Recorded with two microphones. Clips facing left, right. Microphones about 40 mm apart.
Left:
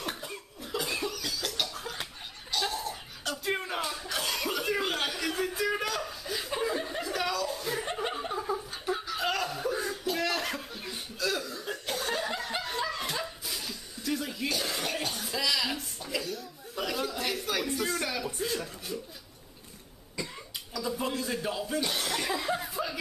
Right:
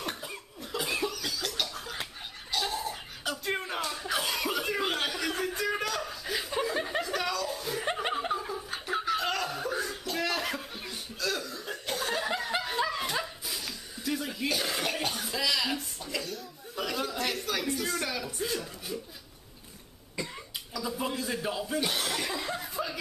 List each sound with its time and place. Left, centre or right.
0.0 s cough: centre
2.5 s music: centre
4.0 s chuckle: centre
6.2 s chuckle: centre
7.0 s chuckle: centre
7.8 s chuckle: right
9.1 s chuckle: centre
9.8 s a sound: centre
10.8 s chuckle: centre
20.7 s chuckle: centre